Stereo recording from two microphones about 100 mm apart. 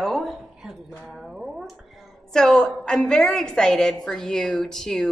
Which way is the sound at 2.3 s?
5° left (ahead or behind).